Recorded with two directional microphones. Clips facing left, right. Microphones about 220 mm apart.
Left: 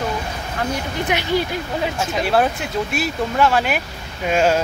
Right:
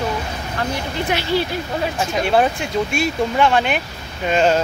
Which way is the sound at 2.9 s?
5° left (ahead or behind).